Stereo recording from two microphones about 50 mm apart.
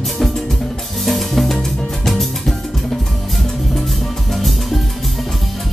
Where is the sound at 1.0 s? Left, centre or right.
Centre.